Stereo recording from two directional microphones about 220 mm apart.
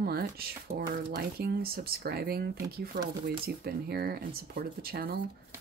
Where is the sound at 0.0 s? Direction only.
45° right (ahead or behind).